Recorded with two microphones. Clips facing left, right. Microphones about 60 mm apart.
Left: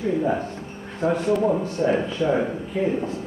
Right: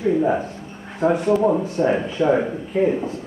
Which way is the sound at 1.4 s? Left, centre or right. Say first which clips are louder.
Right 3 dB; centre.